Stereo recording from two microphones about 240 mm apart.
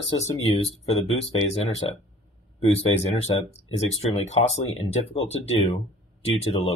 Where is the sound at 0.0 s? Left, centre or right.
Left.